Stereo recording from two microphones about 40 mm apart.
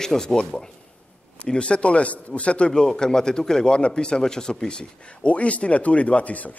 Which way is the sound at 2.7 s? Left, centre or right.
Centre.